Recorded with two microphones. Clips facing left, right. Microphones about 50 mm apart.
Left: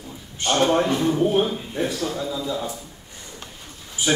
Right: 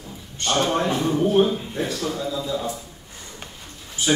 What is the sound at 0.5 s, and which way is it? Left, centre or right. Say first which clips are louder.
A man's voice: left 2 dB; centre.